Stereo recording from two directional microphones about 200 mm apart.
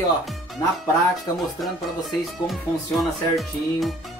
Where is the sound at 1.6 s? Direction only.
Centre (ahead or behind).